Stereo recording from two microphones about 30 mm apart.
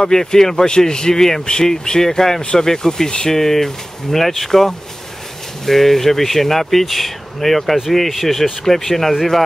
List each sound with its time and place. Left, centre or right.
0.1 s speech: centre